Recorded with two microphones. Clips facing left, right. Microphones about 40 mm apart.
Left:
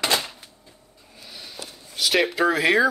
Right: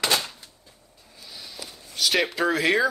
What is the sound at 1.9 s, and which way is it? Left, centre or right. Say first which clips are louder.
Speech: left 2 dB; centre.